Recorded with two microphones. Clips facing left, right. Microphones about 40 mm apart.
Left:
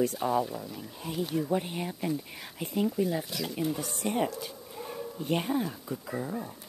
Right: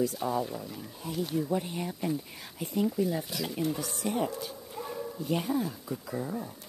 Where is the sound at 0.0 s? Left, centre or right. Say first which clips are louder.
Left 2 dB; left.